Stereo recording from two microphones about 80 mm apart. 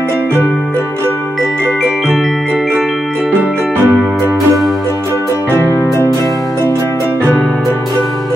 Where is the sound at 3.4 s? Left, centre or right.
Right.